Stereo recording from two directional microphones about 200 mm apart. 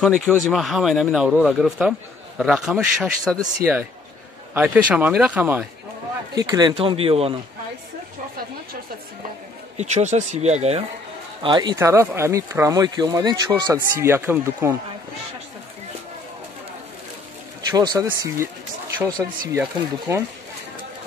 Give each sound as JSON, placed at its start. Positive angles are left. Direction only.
{"t": 0.0, "sound": "a man's voice", "side_deg": 5}
{"t": 6.3, "sound": "speech", "side_deg": -20}
{"t": 9.8, "sound": "speech", "side_deg": -35}
{"t": 17.6, "sound": "speech", "side_deg": -20}